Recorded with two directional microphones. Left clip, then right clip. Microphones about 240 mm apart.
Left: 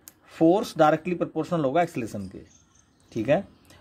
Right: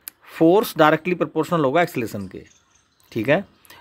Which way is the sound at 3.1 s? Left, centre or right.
Right.